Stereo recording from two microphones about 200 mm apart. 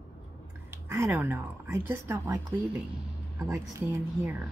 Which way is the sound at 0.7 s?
15° right (ahead or behind).